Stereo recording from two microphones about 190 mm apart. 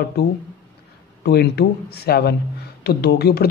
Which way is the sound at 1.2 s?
60° left (ahead or behind).